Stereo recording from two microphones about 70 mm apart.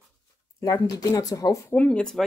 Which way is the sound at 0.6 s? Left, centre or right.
Left.